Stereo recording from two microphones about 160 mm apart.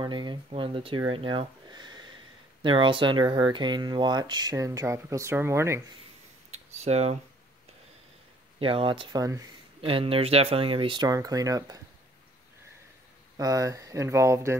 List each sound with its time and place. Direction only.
0.0 s a sound: 25° right (ahead or behind)
0.5 s speech: 35° right (ahead or behind); by 5.8 s 15° right (ahead or behind)
6.8 s speech: 40° right (ahead or behind)
8.5 s speech: 35° right (ahead or behind)
9.8 s speech: 35° right (ahead or behind)
13.4 s speech: 20° right (ahead or behind)